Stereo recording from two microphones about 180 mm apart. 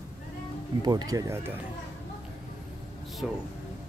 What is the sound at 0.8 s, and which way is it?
Speech, 20° right (ahead or behind).